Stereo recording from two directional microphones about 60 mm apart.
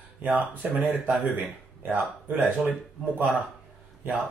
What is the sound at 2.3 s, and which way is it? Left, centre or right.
Speech, right.